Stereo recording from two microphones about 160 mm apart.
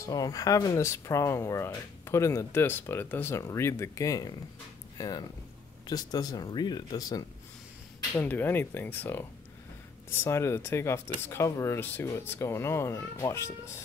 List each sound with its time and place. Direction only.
0.0 s speech: 20° left (ahead or behind)
8.2 s speech: 10° left (ahead or behind)